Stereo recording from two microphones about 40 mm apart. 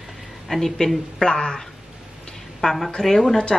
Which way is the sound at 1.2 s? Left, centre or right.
Centre.